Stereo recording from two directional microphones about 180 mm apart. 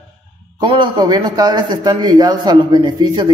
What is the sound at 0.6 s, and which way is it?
A man's voice, 25° right (ahead or behind).